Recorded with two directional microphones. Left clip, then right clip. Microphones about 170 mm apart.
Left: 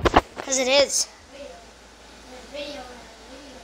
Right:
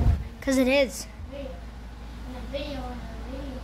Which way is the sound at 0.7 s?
10° right (ahead or behind).